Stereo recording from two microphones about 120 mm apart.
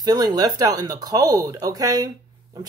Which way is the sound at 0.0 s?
35° right (ahead or behind).